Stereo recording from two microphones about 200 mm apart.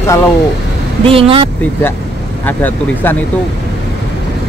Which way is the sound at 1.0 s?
25° right (ahead or behind).